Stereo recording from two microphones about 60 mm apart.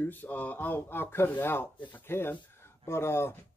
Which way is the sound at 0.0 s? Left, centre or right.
Left.